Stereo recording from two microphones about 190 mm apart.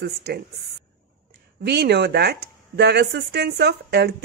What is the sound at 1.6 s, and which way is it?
Speech, 60° right (ahead or behind).